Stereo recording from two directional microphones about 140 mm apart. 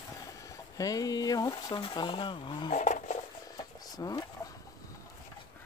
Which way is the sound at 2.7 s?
60° left (ahead or behind).